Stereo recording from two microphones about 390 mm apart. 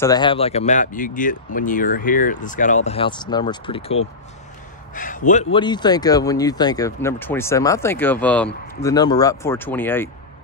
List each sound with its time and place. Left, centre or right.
0.0 s speech: centre